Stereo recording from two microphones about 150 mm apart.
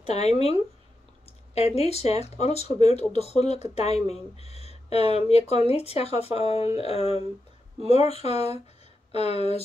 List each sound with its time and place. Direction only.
0.0 s speech: 45° left (ahead or behind)